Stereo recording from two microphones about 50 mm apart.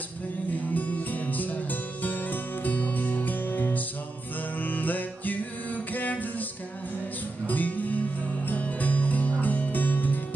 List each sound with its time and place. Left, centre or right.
0.7 s music: left
7.4 s music: left